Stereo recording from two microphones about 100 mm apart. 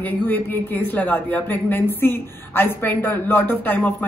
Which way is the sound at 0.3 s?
20° left (ahead or behind).